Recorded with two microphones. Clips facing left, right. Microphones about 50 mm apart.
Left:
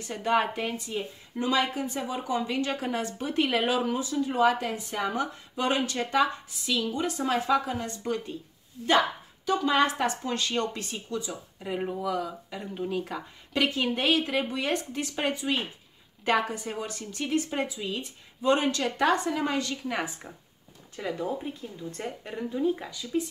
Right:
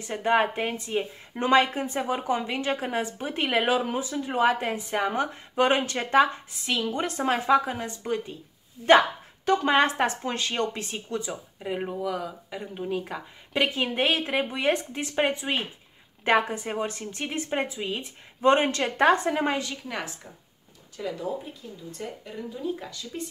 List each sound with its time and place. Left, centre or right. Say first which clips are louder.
0.0 s a woman's voice: right 3 dB; right
9.7 s a woman's voice: right 1 dB; right
11.6 s a woman's voice: right 1 dB; centre; by 19.6 s right
21.0 s speech: even; left
21.5 s speech: left 1 dB; left
22.8 s speech: left 6 dB; centre